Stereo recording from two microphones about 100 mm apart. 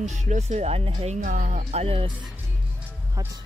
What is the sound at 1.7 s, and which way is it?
Speech, 75° right (ahead or behind).